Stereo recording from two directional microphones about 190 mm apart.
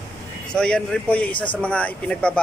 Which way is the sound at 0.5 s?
5° left (ahead or behind).